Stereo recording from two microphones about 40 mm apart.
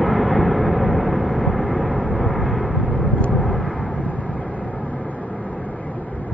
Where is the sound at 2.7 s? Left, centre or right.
Left.